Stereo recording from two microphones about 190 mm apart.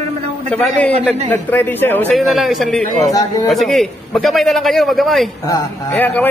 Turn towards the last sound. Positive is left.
turn(degrees=10)  # may be behind; listen again after turning